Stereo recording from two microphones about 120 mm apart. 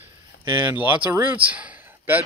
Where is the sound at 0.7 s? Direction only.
15° right (ahead or behind).